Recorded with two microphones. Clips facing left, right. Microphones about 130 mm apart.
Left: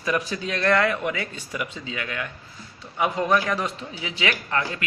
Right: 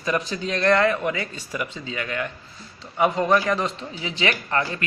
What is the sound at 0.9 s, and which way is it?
A man's voice, 5° left (ahead or behind).